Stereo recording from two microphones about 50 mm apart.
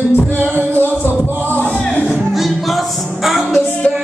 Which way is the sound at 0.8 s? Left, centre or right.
Left.